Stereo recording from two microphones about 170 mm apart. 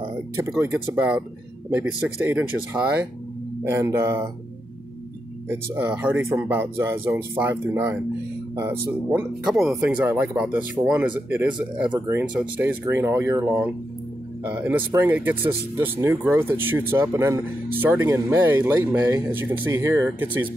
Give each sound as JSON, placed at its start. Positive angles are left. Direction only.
{"t": 0.0, "sound": "speech", "side_deg": -15}
{"t": 5.5, "sound": "speech", "side_deg": -10}
{"t": 9.1, "sound": "speech", "side_deg": -5}